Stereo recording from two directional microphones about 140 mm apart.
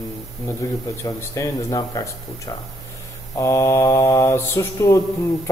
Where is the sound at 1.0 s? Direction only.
25° left (ahead or behind).